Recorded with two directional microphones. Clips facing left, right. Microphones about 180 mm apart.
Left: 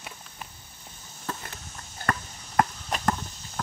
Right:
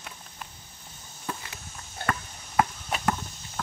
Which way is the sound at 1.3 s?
10° right (ahead or behind).